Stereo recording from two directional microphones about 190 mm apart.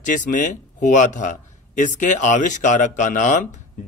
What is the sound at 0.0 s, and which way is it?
A man's voice, 40° left (ahead or behind).